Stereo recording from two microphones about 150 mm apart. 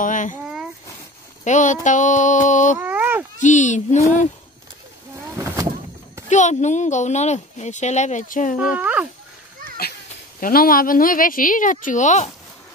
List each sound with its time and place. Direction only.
0.0 s a child's voice: 60° left (ahead or behind)
1.4 s child singing: 55° left (ahead or behind)
2.8 s a sound: 10° right (ahead or behind)
3.3 s child singing: 55° left (ahead or behind)
6.2 s speech: 55° left (ahead or behind)
8.5 s speech: 10° right (ahead or behind)
10.4 s a woman's voice: 75° left (ahead or behind); by 12.3 s 55° left (ahead or behind)